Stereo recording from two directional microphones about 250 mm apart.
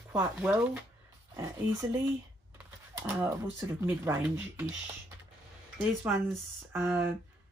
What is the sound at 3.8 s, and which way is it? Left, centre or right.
Speech, centre.